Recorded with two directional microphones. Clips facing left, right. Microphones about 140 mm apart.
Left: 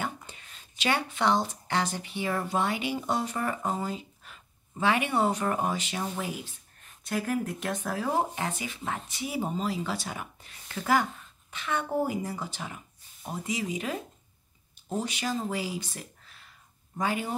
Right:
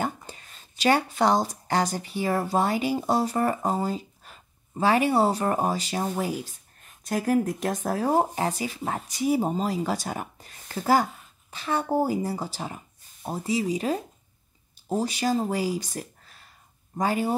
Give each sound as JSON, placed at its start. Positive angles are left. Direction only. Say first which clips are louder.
{"t": 0.0, "sound": "speech", "louder": "right 5 dB", "side_deg": -40}